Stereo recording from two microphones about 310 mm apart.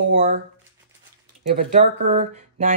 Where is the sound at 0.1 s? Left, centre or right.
Right.